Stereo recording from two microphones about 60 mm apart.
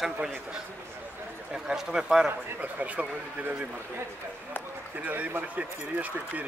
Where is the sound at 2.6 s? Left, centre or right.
Right.